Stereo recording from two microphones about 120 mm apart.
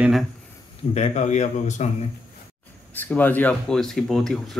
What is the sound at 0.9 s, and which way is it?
Speech, 70° left (ahead or behind).